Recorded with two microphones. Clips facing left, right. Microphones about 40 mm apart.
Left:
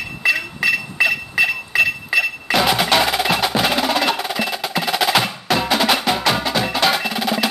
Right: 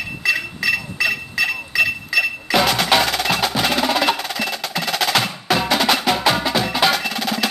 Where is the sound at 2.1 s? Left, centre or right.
Left.